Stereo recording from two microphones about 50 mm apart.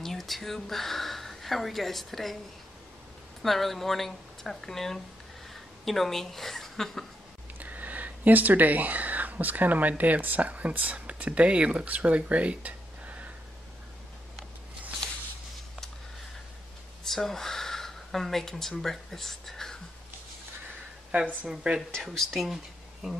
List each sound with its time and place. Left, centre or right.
0.0 s speech: centre
3.4 s speech: centre
7.5 s speech: right
17.0 s speech: centre
21.7 s speech: right
22.1 s speech: centre